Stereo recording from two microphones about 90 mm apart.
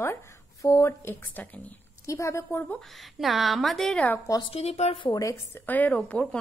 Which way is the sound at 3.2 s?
Centre (ahead or behind).